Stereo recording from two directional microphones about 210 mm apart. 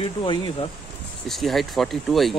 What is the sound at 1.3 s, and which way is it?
Speech, centre (ahead or behind).